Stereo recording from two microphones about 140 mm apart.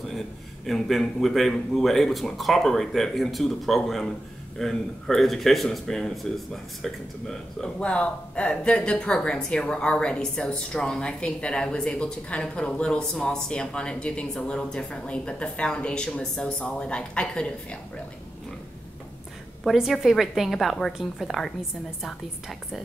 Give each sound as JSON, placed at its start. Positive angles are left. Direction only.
{"t": 0.7, "sound": "speech", "side_deg": 0}
{"t": 19.6, "sound": "speech", "side_deg": 0}